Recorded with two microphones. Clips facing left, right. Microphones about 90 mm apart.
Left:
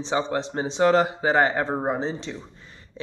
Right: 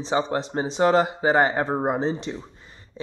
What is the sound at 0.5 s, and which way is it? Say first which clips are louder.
Speech: even; 20° right (ahead or behind).